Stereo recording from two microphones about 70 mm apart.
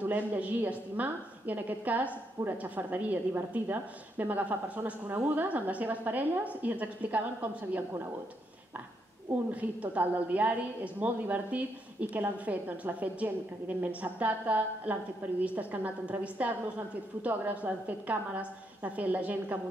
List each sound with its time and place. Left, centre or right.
0.0 s a woman's voice: right
9.5 s a woman's voice: right